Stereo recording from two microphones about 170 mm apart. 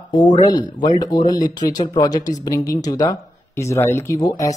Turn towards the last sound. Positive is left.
turn(degrees=20)  # may be behind; listen again after turning